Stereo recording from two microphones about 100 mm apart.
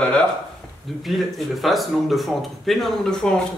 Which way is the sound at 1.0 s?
Centre (ahead or behind).